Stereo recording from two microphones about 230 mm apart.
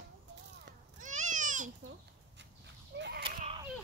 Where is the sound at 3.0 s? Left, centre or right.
Right.